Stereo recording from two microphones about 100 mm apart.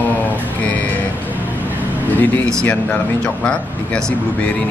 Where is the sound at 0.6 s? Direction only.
15° left (ahead or behind).